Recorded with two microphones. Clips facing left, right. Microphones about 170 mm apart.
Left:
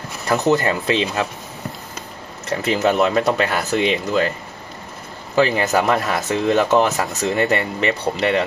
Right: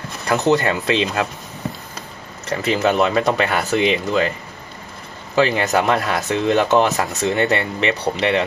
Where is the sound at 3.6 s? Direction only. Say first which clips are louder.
Right 2 dB; 35° left (ahead or behind).